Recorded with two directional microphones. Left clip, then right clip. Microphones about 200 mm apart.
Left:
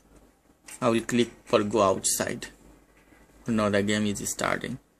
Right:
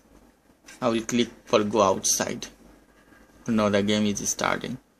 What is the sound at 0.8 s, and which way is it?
Speech, 20° left (ahead or behind).